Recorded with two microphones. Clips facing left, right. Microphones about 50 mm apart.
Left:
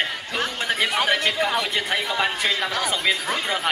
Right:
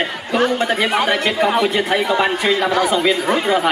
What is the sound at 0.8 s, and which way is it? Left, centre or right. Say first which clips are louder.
Speech: right 2 dB; centre.